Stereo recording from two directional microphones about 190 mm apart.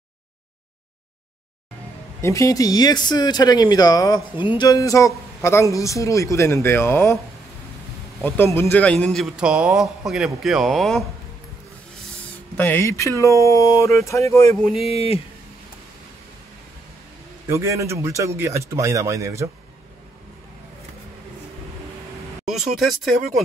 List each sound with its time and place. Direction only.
2.2 s speech: 15° left (ahead or behind)
8.2 s a man's voice: 10° left (ahead or behind)
12.5 s speech: 10° left (ahead or behind)
14.9 s speech: 30° left (ahead or behind)
17.5 s speech: 15° right (ahead or behind)
22.5 s a man's voice: centre (ahead or behind)